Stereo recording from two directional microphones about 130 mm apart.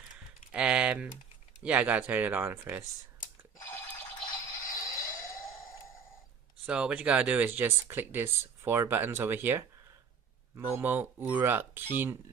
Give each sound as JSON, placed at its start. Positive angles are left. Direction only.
{"t": 0.5, "sound": "typing", "side_deg": -10}
{"t": 1.6, "sound": "speech", "side_deg": -10}
{"t": 4.3, "sound": "a sound", "side_deg": 30}
{"t": 6.6, "sound": "speech", "side_deg": -10}